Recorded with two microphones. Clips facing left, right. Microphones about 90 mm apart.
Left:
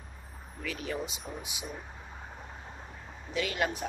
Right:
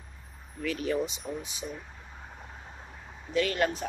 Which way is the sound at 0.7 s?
Centre (ahead or behind).